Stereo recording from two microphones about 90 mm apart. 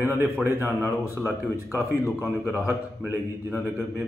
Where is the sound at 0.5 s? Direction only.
35° left (ahead or behind).